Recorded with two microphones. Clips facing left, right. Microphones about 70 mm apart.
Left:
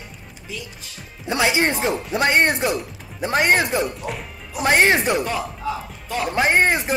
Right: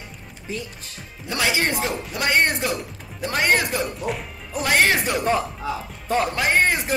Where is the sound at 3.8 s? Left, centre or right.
Centre.